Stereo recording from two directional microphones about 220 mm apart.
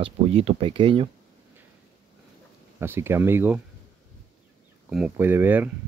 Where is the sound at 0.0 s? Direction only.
25° right (ahead or behind).